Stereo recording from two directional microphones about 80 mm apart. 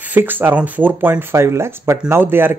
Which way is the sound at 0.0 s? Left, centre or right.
Right.